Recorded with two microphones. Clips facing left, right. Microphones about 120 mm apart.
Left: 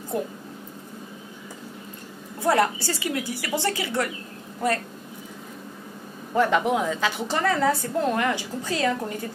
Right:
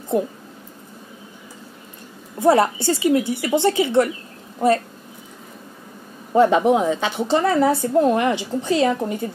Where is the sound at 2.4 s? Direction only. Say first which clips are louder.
Right 6 dB; 25° right (ahead or behind).